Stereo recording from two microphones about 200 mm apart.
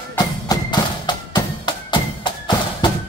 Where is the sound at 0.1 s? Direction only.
20° left (ahead or behind).